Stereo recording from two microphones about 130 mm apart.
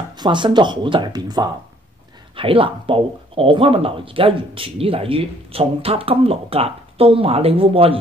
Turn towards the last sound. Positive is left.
turn(degrees=-45)  # may be behind; listen again after turning